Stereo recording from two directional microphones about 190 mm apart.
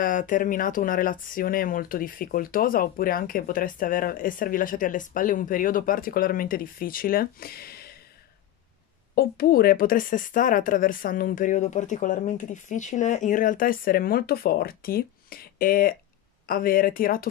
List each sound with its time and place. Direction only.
0.0 s speech: 45° left (ahead or behind)
9.1 s speech: 50° left (ahead or behind)